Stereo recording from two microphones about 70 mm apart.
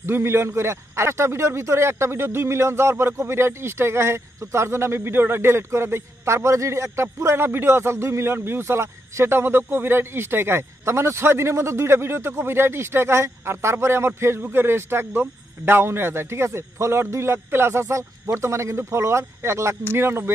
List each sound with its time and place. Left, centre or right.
0.0 s a man's voice: right